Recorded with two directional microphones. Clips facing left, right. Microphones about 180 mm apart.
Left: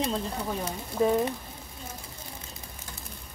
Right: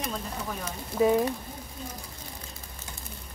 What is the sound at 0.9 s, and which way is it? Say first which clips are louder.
Speech: right 2 dB; centre (ahead or behind).